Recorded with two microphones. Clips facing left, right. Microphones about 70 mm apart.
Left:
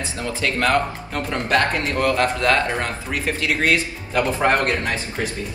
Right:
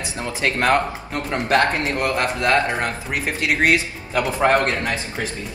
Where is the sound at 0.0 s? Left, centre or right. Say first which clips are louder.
Right 1 dB; right.